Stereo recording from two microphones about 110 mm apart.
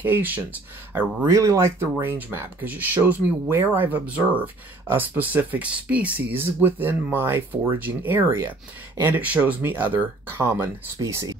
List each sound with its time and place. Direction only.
0.0 s speech: 15° right (ahead or behind)
1.3 s speech: 25° right (ahead or behind)